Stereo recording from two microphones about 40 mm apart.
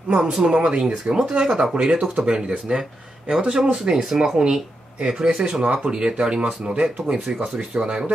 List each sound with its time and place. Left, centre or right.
0.1 s speech: centre